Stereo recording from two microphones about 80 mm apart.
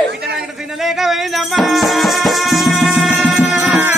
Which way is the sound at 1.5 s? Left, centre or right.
Centre.